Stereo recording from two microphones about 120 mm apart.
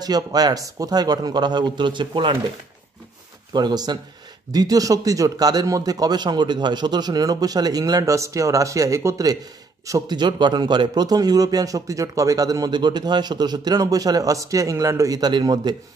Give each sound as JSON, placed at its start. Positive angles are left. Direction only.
{"t": 0.0, "sound": "a man's voice", "side_deg": -35}
{"t": 3.5, "sound": "a man's voice", "side_deg": -35}